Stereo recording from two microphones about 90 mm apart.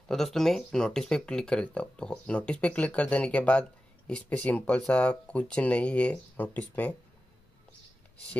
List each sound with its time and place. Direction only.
0.1 s speech: 5° left (ahead or behind)